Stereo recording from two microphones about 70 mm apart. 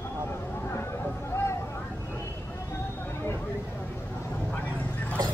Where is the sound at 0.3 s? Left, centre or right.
Left.